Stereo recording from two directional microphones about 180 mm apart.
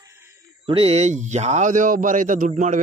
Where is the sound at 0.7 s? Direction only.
35° right (ahead or behind).